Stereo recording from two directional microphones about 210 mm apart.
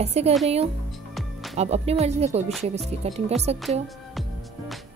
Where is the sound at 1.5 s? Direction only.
30° right (ahead or behind).